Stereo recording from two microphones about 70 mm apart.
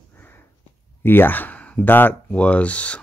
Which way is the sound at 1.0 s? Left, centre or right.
Left.